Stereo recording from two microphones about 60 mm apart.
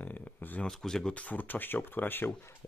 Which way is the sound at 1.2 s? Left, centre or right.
Left.